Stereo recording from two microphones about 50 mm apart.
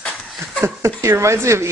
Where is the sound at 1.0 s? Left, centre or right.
Right.